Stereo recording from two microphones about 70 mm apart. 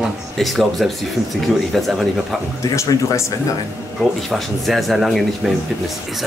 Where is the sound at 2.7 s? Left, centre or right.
Left.